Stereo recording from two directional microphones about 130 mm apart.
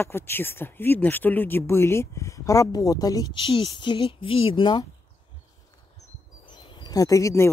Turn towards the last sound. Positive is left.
turn(degrees=20)  # may be behind; listen again after turning